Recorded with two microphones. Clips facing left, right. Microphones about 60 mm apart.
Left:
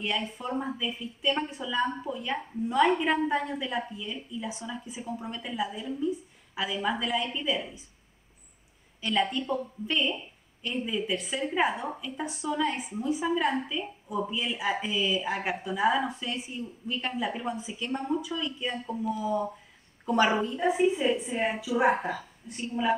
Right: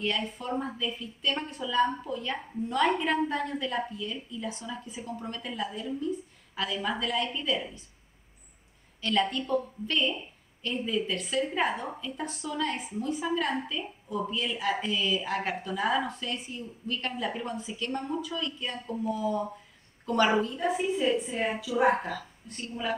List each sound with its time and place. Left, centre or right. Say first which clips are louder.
0.0 s a woman's voice: even; centre
9.1 s a woman's voice: right 1 dB; centre